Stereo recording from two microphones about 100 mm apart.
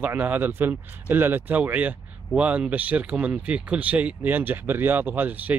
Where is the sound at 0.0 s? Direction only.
20° right (ahead or behind).